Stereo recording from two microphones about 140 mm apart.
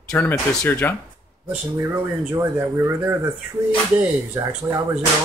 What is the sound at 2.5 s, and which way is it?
Speech, 15° right (ahead or behind).